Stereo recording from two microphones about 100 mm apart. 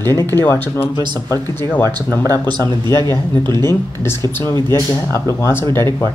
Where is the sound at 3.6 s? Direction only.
25° left (ahead or behind).